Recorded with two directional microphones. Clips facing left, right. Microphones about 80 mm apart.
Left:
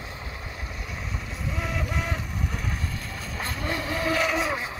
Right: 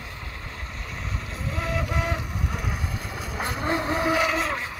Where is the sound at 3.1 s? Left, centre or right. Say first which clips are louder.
Right 4 dB; centre.